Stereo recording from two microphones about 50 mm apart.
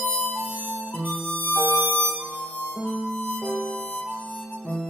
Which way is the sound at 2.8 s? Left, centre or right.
Centre.